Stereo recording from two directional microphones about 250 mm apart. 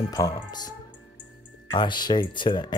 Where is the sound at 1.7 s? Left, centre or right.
Centre.